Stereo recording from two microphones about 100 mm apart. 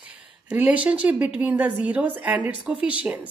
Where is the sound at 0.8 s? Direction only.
15° right (ahead or behind).